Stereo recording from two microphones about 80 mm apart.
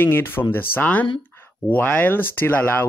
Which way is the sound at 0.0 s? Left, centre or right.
Left.